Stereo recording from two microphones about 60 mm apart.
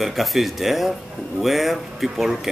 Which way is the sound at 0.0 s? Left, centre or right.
Centre.